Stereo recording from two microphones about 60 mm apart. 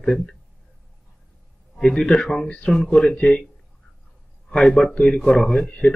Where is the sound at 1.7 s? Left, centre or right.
Centre.